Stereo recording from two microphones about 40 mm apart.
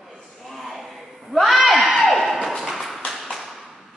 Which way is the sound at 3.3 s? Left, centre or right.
Centre.